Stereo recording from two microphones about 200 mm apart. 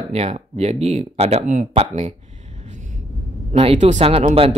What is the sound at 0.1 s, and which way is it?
Speech, 30° right (ahead or behind).